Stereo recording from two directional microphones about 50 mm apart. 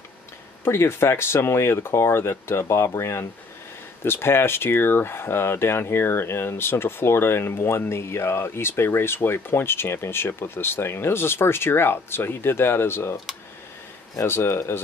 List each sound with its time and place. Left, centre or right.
0.7 s speech: left
4.0 s speech: left
14.2 s speech: left